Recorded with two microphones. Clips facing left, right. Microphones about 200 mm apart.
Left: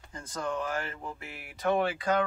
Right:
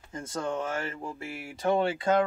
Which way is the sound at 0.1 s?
25° right (ahead or behind).